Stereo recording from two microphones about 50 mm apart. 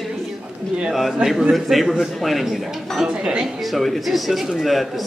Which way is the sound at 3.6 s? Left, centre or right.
Centre.